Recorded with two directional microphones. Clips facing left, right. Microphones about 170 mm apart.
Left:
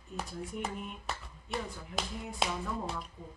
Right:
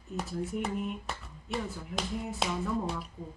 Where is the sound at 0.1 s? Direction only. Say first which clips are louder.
Right 5 dB; centre (ahead or behind).